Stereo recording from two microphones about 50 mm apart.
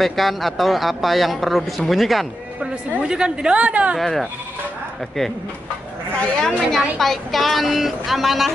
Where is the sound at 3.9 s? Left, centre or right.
Centre.